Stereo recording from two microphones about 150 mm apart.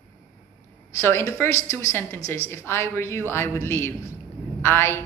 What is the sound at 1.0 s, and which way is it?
A woman's voice, 15° left (ahead or behind).